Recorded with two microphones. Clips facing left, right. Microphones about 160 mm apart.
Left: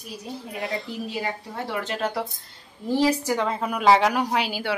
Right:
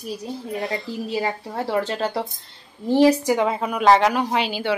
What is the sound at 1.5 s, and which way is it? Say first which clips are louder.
Speech: right 6 dB; 35° right (ahead or behind).